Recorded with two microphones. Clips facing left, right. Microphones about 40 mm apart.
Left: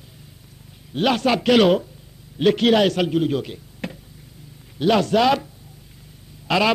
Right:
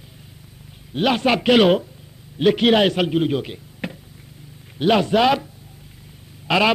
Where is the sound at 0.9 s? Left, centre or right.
Centre.